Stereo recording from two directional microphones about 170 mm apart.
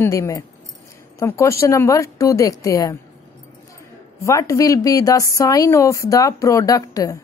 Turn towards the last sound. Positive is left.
turn(degrees=20)  # may be behind; listen again after turning